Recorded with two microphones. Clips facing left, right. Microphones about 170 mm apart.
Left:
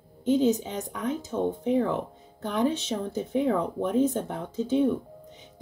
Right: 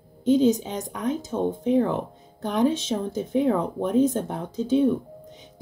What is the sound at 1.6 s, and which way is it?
Speech, 20° right (ahead or behind).